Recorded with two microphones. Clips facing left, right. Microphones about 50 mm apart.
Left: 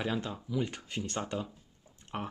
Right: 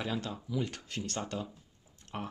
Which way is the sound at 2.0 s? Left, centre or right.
Centre.